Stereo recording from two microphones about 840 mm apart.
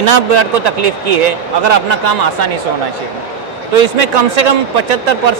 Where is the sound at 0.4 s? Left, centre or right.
Right.